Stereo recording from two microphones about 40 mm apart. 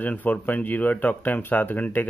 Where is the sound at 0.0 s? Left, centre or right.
Left.